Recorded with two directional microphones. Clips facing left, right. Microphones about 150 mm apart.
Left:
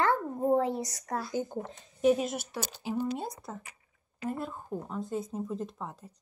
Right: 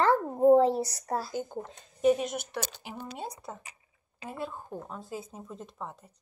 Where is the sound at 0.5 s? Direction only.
35° right (ahead or behind).